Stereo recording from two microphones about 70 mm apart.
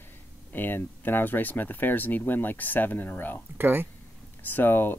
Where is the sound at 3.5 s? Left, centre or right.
Right.